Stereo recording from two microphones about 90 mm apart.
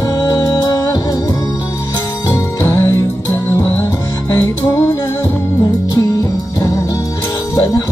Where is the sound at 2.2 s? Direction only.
35° left (ahead or behind).